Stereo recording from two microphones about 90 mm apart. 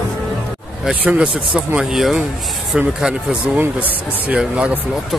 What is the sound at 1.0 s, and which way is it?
Speech, 15° right (ahead or behind).